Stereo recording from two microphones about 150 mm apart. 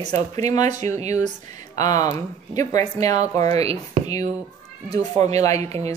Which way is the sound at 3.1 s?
50° right (ahead or behind).